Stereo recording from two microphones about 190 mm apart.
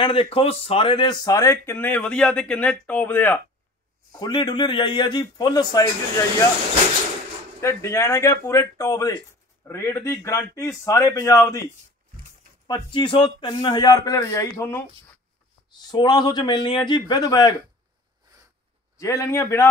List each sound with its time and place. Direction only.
0.0 s speech: 30° left (ahead or behind); by 3.3 s 10° left (ahead or behind)
4.2 s a man's voice: 25° left (ahead or behind)
7.6 s speech: 15° left (ahead or behind)
12.6 s a man's voice: 25° left (ahead or behind)
15.9 s a man's voice: 20° left (ahead or behind)
18.9 s speech: 15° left (ahead or behind)